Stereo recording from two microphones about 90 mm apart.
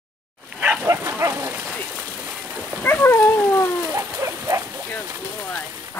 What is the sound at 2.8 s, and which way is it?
Dog, 25° left (ahead or behind).